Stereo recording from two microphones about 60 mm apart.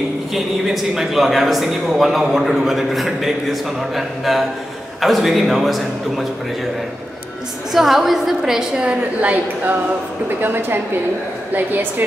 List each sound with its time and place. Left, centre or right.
0.3 s a man's voice: centre
7.7 s a man's voice: centre
9.2 s a woman's voice: right
10.4 s a woman's voice: right